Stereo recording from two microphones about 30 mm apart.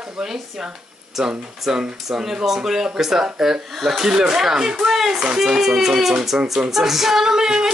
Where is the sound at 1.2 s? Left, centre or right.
Right.